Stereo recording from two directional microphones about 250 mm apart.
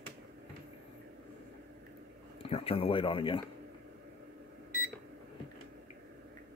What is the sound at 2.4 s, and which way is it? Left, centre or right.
Speech, left.